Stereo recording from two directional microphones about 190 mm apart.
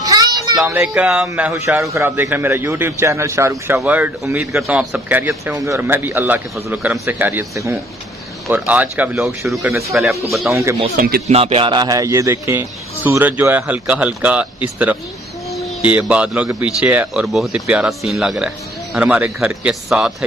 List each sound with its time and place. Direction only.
0.0 s a man's voice: 20° right (ahead or behind)
11.0 s speech: 55° right (ahead or behind)
11.2 s a man's voice: 30° right (ahead or behind); by 20.2 s centre (ahead or behind)